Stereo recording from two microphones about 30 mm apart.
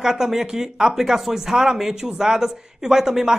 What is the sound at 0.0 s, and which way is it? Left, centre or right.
Speech, centre.